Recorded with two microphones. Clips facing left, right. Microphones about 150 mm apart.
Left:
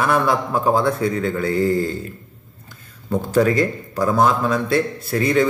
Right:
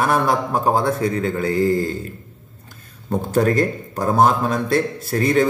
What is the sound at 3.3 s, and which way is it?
A man's voice, 45° right (ahead or behind).